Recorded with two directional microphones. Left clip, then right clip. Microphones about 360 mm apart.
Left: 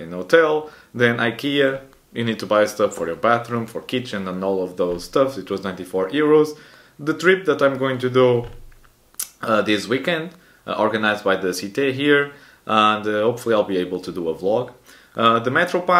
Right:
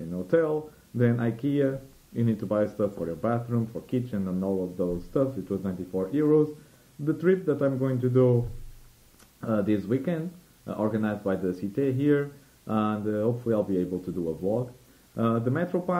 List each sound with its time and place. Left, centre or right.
0.1 s speech: centre
9.4 s speech: centre
15.1 s speech: centre